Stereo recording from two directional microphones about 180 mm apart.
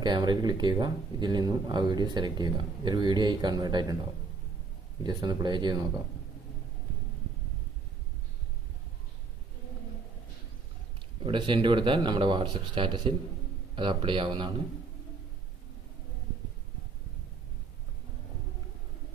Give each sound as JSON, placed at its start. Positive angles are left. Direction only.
{"t": 0.0, "sound": "speech", "side_deg": -25}
{"t": 5.0, "sound": "speech", "side_deg": -25}
{"t": 11.2, "sound": "speech", "side_deg": -30}